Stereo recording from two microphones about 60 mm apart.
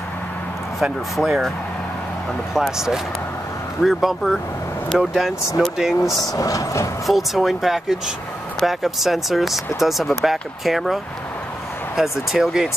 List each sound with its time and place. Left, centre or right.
0.7 s speech: centre
2.5 s speech: centre
5.6 s speech: centre
6.0 s speech: centre
6.3 s speech: left
7.1 s speech: centre
12.0 s speech: centre